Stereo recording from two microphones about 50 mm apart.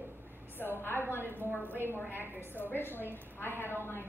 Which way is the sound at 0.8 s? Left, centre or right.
Left.